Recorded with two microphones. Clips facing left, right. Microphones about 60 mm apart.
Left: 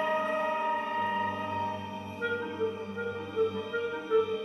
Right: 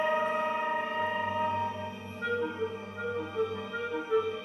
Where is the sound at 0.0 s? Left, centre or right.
Centre.